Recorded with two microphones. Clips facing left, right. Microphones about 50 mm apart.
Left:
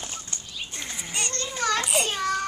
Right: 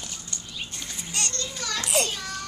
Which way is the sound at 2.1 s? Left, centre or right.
Left.